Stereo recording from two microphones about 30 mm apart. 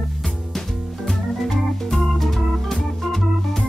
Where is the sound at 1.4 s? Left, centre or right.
Centre.